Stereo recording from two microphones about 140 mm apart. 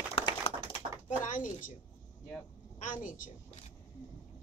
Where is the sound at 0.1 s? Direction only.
40° left (ahead or behind).